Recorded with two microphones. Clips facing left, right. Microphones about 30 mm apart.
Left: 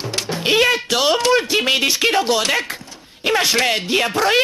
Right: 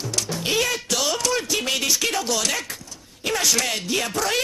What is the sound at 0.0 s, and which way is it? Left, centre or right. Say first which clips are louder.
Speech: left 5 dB; left.